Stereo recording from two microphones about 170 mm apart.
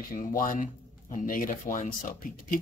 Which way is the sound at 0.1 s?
55° left (ahead or behind).